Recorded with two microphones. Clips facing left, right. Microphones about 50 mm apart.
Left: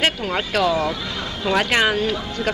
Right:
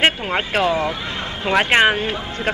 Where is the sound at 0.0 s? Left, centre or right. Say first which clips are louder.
Right 3 dB; right.